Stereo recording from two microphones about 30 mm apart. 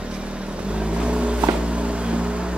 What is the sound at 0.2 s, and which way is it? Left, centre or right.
Vehicle, right.